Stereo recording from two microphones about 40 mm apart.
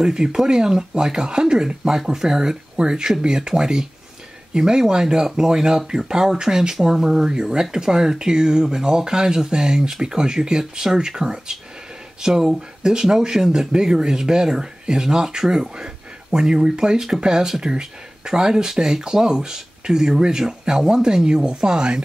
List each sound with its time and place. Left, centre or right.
0.0 s speech: centre